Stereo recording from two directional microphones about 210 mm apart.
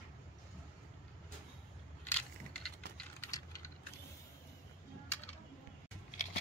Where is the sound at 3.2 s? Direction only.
15° left (ahead or behind).